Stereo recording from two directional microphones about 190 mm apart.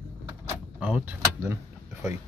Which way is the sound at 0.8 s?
5° right (ahead or behind).